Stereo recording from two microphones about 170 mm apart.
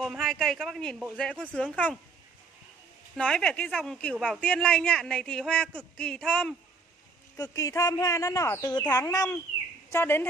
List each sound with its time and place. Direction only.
0.0 s speech: centre (ahead or behind)
3.2 s speech: 5° left (ahead or behind)
7.3 s speech: 20° left (ahead or behind)